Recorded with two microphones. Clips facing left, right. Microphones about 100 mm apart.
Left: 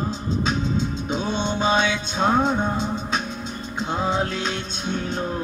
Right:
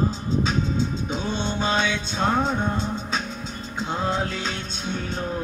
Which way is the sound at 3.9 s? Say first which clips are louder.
Left 2 dB; 15° left (ahead or behind).